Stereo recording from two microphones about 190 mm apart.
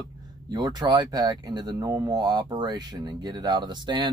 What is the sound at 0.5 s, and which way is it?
Speech, 20° right (ahead or behind).